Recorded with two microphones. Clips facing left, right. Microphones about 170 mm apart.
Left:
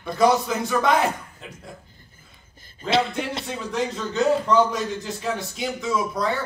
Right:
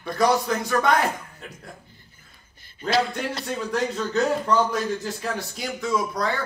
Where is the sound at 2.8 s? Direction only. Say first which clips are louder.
Left 1 dB; 25° left (ahead or behind).